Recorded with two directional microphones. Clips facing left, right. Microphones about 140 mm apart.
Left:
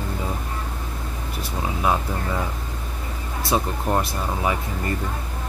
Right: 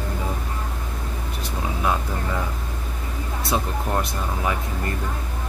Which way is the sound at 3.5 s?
5° left (ahead or behind).